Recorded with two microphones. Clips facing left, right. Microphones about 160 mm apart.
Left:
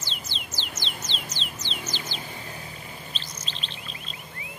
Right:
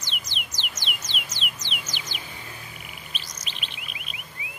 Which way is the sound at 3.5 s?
15° right (ahead or behind).